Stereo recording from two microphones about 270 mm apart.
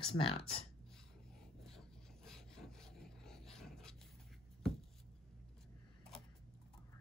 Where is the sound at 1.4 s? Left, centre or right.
Centre.